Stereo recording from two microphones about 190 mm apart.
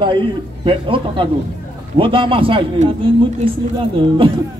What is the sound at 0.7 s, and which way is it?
Speech, 25° right (ahead or behind).